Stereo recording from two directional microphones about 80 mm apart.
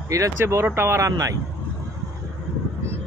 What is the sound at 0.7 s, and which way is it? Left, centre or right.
Speech, right.